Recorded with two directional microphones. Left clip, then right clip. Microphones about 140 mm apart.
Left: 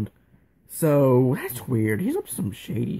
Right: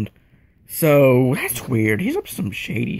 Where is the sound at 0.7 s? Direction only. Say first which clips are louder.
Right 5 dB; 20° right (ahead or behind).